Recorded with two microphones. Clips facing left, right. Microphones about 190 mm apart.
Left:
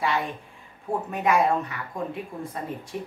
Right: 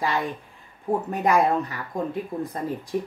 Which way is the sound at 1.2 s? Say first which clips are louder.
Right 1 dB; 35° right (ahead or behind).